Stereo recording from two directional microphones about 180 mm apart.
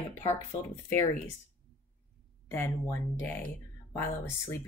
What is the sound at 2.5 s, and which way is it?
Speech, 15° left (ahead or behind).